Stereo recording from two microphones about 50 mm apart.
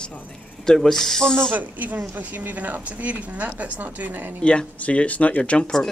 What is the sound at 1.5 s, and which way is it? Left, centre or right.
A woman's voice, right.